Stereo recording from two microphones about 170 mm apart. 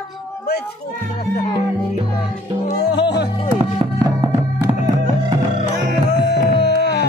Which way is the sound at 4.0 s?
25° right (ahead or behind).